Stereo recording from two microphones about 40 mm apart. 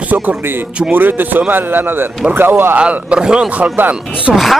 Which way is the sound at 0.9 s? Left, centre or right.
Right.